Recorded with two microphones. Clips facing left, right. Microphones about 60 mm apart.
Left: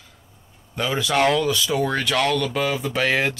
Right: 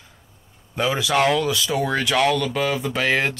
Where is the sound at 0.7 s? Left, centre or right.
Centre.